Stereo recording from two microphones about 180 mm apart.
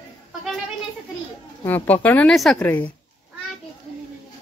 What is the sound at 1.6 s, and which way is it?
Speech, 10° left (ahead or behind).